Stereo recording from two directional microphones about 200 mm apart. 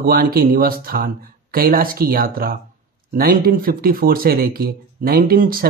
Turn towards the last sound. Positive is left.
turn(degrees=-45)  # may be behind; listen again after turning